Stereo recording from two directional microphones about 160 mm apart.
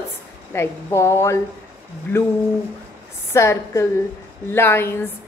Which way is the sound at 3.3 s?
15° left (ahead or behind).